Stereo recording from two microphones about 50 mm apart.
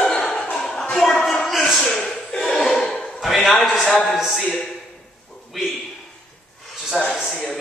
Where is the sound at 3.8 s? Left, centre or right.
Centre.